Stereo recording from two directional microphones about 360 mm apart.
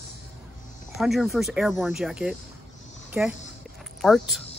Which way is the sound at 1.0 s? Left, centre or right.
Centre.